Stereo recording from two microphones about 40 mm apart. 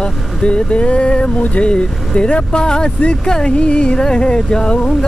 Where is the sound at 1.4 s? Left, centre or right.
Left.